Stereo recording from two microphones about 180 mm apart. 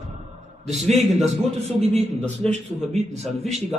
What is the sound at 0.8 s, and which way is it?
A man's voice, 40° right (ahead or behind).